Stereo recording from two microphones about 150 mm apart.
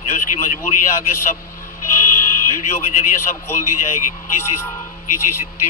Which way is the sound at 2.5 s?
60° left (ahead or behind).